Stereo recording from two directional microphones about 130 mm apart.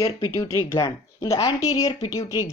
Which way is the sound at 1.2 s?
25° left (ahead or behind).